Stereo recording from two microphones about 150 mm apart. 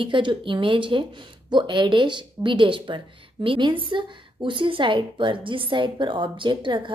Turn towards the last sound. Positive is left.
turn(degrees=-30)  # may be behind; listen again after turning